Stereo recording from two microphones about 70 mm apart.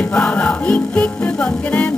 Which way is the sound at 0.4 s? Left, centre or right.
Centre.